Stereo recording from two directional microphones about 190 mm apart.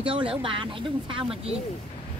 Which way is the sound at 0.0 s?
25° right (ahead or behind).